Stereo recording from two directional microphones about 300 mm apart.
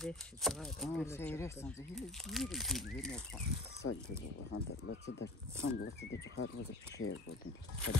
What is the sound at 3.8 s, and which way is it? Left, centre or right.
Speech, left.